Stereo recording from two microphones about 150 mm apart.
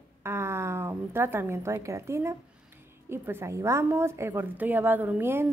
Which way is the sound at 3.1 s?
15° right (ahead or behind).